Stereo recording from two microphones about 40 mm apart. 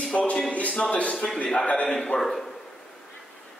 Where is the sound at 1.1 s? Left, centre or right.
Centre.